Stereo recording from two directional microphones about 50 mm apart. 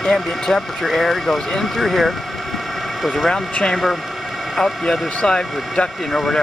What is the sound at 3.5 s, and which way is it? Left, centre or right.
Speech, centre.